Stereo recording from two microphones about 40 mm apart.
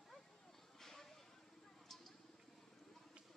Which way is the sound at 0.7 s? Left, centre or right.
Centre.